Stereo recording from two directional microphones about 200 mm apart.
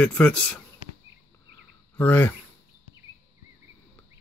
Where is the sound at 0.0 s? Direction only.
5° left (ahead or behind).